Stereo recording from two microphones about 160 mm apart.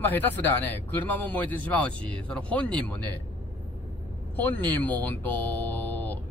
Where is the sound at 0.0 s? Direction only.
10° left (ahead or behind).